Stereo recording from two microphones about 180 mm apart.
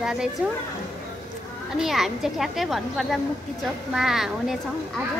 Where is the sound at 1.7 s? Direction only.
Centre (ahead or behind).